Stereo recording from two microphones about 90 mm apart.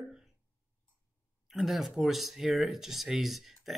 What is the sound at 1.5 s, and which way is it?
Speech, 5° right (ahead or behind).